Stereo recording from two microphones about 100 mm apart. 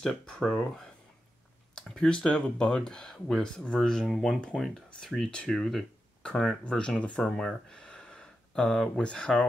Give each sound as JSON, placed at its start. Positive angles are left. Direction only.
{"t": 0.0, "sound": "speech", "side_deg": 5}